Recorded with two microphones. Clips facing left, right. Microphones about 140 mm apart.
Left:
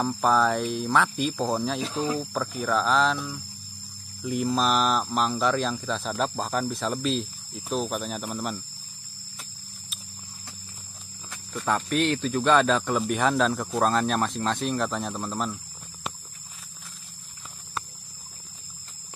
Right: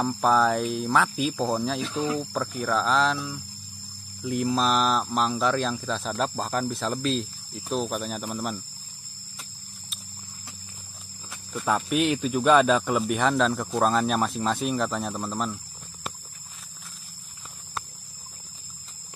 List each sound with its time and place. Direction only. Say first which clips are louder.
0.0 s speech: right 1 dB; centre (ahead or behind)
1.9 s speech: even; 35° left (ahead or behind)
2.1 s speech: even; centre (ahead or behind)
11.2 s speech: right 1 dB; 5° right (ahead or behind)